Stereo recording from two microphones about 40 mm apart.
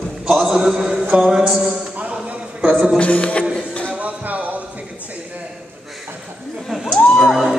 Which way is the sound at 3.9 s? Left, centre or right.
Right.